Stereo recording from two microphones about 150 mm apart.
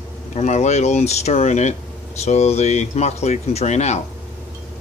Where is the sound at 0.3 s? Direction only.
50° left (ahead or behind).